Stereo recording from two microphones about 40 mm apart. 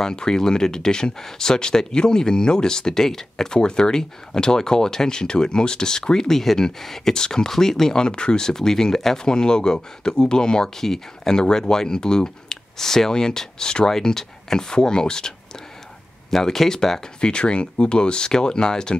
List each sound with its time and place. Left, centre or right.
0.0 s speech: centre
16.3 s speech: centre